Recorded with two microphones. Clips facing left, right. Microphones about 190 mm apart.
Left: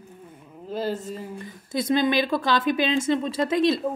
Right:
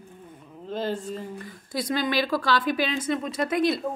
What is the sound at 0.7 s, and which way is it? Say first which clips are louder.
Speech: left 1 dB; 5° left (ahead or behind).